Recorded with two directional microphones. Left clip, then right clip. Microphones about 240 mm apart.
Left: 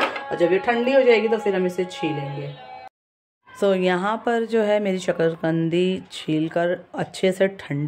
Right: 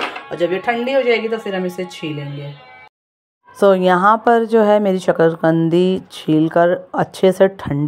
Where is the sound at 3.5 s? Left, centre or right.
Centre.